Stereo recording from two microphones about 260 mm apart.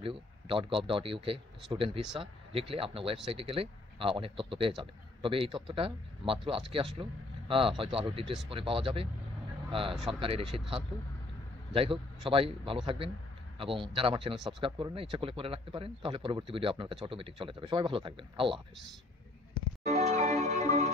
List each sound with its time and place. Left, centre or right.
0.0 s speech: right
11.7 s speech: centre
20.1 s music: right